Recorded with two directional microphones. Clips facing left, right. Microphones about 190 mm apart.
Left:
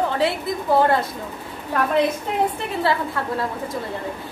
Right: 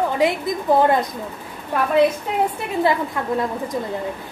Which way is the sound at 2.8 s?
15° right (ahead or behind).